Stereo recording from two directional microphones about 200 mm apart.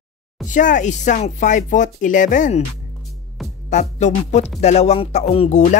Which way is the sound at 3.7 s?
35° left (ahead or behind).